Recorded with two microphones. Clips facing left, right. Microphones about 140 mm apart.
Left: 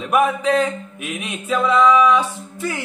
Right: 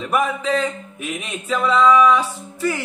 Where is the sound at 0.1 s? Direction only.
10° left (ahead or behind).